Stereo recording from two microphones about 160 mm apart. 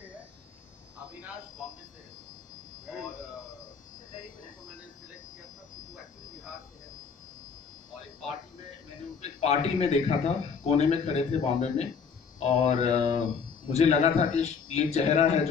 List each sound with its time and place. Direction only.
9.2 s a man's voice: 40° left (ahead or behind)